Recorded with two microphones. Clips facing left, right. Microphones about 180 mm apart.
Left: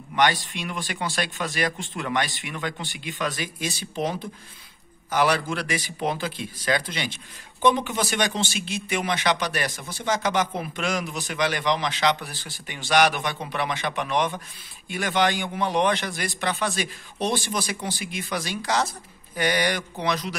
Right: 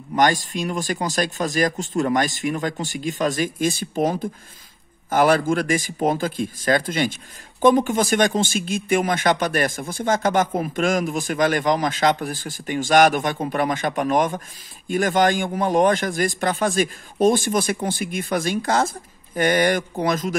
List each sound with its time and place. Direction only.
0.1 s speech: 45° right (ahead or behind)